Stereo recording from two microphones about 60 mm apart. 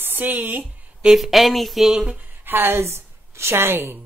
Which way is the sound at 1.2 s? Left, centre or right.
Centre.